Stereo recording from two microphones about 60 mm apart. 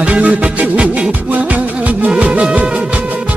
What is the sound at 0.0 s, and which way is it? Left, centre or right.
Music, right.